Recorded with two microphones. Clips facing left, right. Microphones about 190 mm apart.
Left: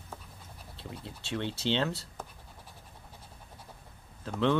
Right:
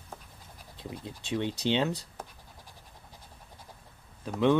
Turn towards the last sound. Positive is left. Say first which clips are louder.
# right 3 dB
turn(degrees=-15)  # may be behind; listen again after turning